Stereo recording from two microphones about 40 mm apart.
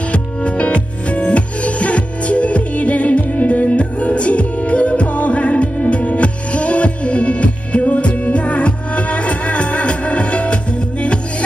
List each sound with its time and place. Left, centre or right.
0.1 s music: left